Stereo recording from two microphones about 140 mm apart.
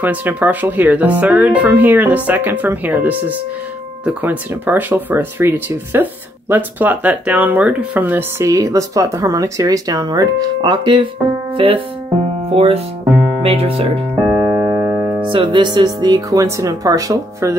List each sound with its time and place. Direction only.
0.0 s speech: 10° right (ahead or behind); by 13.8 s 45° right (ahead or behind)
14.5 s music: 20° right (ahead or behind)
15.2 s speech: 35° right (ahead or behind)